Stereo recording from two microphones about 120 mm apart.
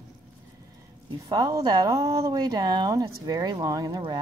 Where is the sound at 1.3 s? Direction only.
35° right (ahead or behind).